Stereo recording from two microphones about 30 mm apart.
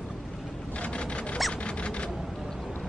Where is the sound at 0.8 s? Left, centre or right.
Left.